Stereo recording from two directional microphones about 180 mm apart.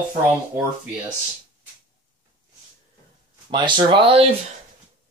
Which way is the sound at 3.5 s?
25° right (ahead or behind).